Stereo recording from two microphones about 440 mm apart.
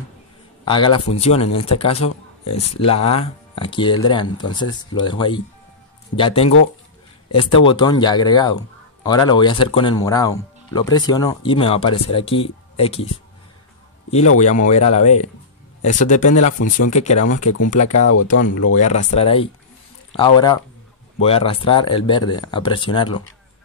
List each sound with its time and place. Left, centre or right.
0.7 s speech: centre
14.4 s speech: centre
17.4 s speech: left
17.6 s speech: centre
18.5 s speech: left
19.1 s speech: centre